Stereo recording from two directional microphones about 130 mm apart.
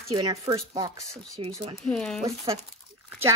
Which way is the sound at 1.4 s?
40° right (ahead or behind).